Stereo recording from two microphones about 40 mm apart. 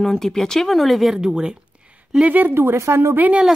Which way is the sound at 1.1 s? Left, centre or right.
Centre.